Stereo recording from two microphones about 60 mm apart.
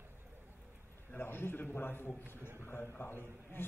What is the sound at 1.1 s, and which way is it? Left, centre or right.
A man's voice, left.